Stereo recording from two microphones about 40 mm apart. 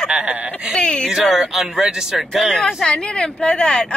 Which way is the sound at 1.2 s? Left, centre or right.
Centre.